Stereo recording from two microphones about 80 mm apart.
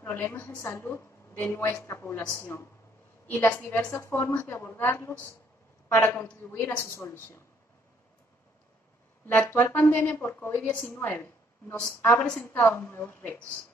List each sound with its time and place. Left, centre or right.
0.0 s a woman's voice: left
1.7 s a woman's voice: left
9.2 s a woman's voice: left